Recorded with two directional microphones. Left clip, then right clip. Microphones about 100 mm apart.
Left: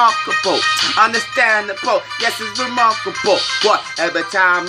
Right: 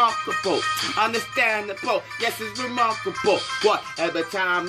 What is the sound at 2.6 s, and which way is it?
Music, 10° left (ahead or behind).